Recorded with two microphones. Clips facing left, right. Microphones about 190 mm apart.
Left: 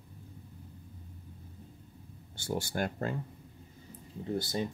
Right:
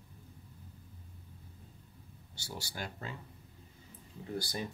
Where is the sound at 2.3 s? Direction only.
50° left (ahead or behind).